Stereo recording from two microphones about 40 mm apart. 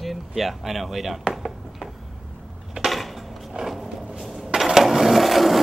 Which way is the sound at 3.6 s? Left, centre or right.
Right.